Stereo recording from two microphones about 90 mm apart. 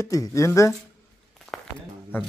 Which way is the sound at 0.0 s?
35° left (ahead or behind).